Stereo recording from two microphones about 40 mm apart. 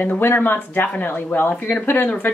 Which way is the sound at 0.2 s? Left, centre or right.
Left.